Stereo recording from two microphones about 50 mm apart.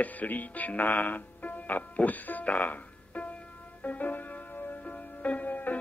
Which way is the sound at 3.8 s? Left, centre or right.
Left.